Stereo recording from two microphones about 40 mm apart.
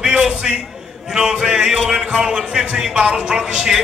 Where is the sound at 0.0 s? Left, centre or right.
Centre.